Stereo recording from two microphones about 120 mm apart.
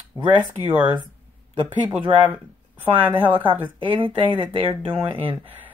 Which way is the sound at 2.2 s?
15° right (ahead or behind).